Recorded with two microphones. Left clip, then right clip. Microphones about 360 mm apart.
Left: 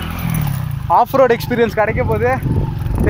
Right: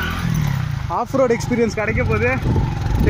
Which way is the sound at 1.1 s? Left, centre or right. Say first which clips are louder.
Left 5 dB; left.